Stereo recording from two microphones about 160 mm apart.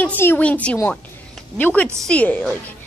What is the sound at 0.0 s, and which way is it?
A woman's voice, 10° left (ahead or behind).